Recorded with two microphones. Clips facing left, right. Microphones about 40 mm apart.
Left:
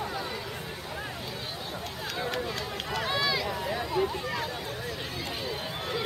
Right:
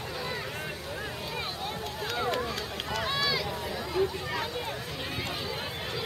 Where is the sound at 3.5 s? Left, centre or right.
Centre.